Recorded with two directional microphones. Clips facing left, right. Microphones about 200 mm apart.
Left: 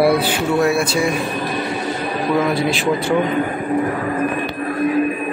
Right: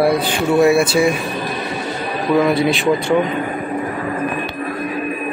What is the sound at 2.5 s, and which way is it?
Speech, centre (ahead or behind).